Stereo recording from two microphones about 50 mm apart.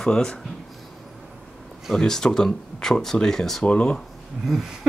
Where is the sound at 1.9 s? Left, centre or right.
Centre.